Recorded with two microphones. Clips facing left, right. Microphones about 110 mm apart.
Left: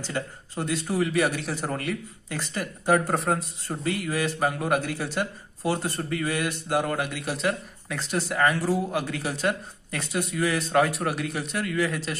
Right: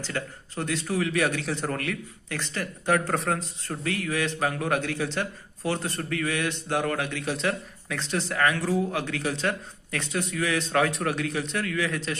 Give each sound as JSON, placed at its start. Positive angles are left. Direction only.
{"t": 0.0, "sound": "speech", "side_deg": 15}